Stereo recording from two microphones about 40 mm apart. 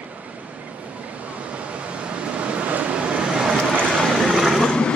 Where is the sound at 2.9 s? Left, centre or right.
Right.